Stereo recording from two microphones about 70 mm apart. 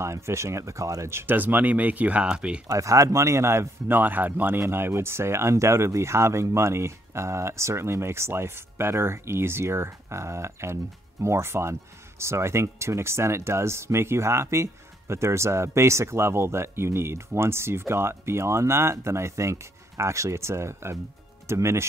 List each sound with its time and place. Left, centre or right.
0.0 s speech: right
1.2 s speech: right
2.7 s speech: right